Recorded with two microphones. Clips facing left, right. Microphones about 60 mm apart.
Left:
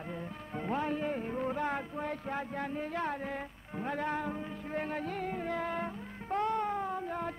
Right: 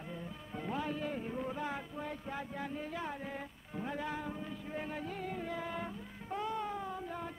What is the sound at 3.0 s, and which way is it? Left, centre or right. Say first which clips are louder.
Music: left 5 dB; left.